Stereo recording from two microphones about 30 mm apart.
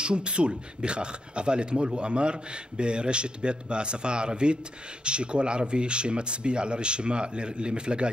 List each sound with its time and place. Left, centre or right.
0.0 s speech: right